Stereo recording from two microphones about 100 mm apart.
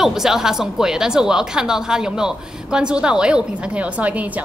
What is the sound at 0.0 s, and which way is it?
Speech, 5° right (ahead or behind).